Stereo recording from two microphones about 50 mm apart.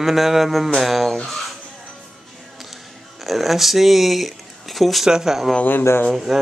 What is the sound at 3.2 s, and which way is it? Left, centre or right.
Speech, centre.